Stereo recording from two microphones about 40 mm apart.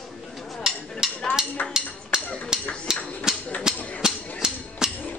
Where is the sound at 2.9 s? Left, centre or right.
Centre.